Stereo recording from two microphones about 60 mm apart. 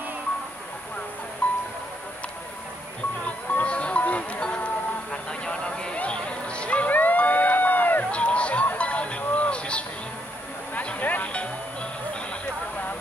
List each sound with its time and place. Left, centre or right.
1.4 s music: left
3.3 s music: left
5.1 s a sound: centre
8.1 s music: centre